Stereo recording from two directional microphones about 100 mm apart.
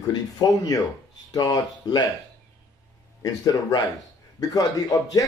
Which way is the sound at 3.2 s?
40° left (ahead or behind).